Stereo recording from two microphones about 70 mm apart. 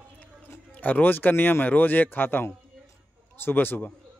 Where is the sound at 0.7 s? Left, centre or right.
Left.